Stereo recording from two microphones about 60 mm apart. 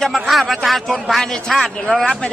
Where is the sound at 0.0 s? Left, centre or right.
Centre.